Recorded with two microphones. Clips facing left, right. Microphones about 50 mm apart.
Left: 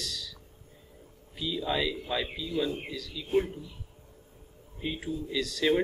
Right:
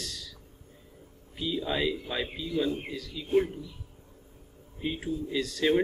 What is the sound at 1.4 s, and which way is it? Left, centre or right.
Speech, right.